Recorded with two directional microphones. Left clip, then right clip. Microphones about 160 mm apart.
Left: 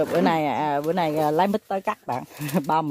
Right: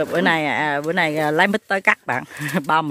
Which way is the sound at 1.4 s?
10° right (ahead or behind).